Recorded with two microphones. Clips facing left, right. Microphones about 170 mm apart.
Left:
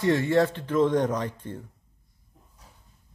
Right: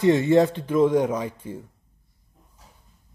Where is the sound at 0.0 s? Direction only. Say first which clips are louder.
Right 4 dB; 20° right (ahead or behind).